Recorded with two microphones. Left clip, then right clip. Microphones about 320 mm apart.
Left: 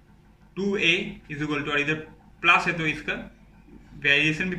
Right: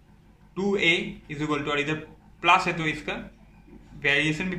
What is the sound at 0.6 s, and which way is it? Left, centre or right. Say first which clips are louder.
A man's voice: even; centre.